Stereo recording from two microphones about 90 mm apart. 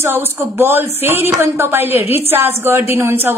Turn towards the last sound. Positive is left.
turn(degrees=-25)  # may be behind; listen again after turning